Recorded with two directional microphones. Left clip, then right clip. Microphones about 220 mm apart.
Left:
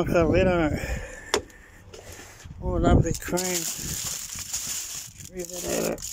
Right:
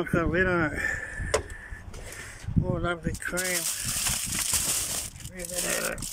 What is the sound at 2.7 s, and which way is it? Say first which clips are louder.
Speech: left 12 dB; 20° left (ahead or behind).